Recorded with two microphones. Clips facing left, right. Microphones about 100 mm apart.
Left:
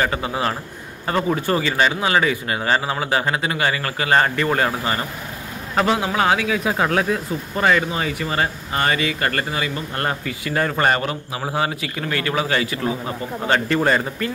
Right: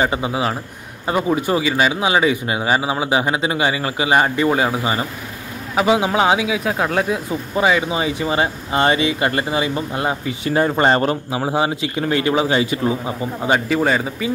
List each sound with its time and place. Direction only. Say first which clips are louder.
0.0 s speech: right 2 dB; 15° right (ahead or behind)
6.5 s speech: even; centre (ahead or behind)
13.7 s speech: right 1 dB; centre (ahead or behind)